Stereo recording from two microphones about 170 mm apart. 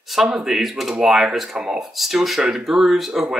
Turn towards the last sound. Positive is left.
turn(degrees=0)  # may be behind; listen again after turning